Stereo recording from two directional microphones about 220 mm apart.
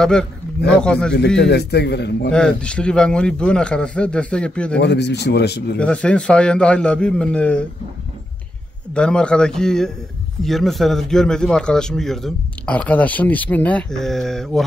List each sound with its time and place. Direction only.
0.0 s a man's voice: centre (ahead or behind)
1.4 s speech: 50° left (ahead or behind)
2.3 s a man's voice: 5° left (ahead or behind)
4.7 s speech: 50° left (ahead or behind)
5.8 s a man's voice: 5° left (ahead or behind)
8.9 s a man's voice: 5° left (ahead or behind)